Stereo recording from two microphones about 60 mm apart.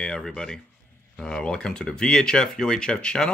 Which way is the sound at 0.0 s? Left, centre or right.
Centre.